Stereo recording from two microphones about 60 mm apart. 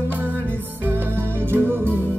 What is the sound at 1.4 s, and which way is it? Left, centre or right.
Music, right.